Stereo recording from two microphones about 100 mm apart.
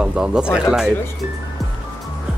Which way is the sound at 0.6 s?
5° right (ahead or behind).